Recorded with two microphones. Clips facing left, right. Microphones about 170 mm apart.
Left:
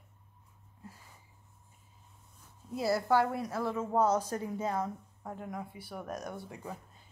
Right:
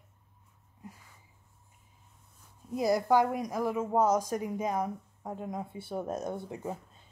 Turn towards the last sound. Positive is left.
turn(degrees=-20)  # may be behind; listen again after turning